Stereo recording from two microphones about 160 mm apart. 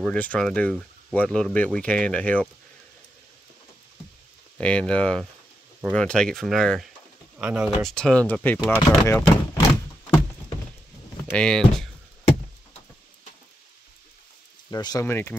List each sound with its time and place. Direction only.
0.0 s speech: 5° left (ahead or behind)
4.6 s speech: 5° left (ahead or behind)
7.3 s speech: 10° right (ahead or behind)
7.8 s speech: 5° left (ahead or behind)
11.3 s speech: 5° left (ahead or behind)
14.7 s speech: 25° left (ahead or behind)